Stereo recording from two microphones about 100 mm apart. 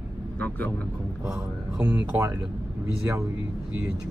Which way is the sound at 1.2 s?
10° right (ahead or behind).